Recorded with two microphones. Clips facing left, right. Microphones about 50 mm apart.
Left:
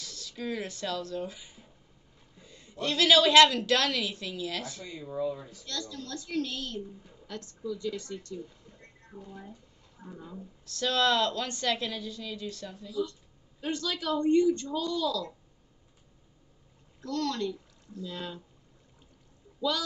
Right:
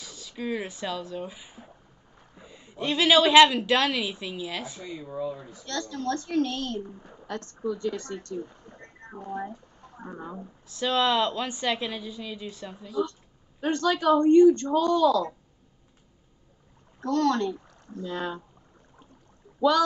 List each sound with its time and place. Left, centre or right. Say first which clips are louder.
0.0 s a woman's voice: right 3 dB; centre
5.0 s a woman's voice: left 1 dB; centre
5.4 s a woman's voice: right 2 dB; right
5.7 s a woman's voice: right 9 dB; right
10.6 s a woman's voice: right 2 dB; centre
12.8 s speech: right 4 dB; right
17.0 s speech: right 7 dB; right
19.6 s a woman's voice: right 8 dB; right